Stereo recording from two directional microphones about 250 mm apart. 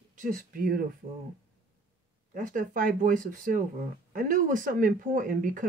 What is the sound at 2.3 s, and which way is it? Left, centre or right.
Speech, right.